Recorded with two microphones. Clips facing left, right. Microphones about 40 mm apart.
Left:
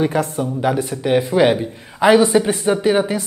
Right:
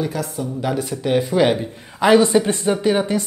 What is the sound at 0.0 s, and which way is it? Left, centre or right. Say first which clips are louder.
Speech: left 5 dB; left.